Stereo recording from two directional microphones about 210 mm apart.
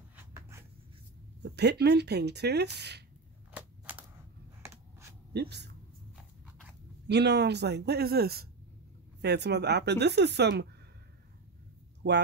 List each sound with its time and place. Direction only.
0.1 s writing: 10° right (ahead or behind)
1.4 s speech: 50° right (ahead or behind)
3.5 s a sound: 10° right (ahead or behind)
5.3 s speech: 50° right (ahead or behind)
7.1 s speech: 55° right (ahead or behind)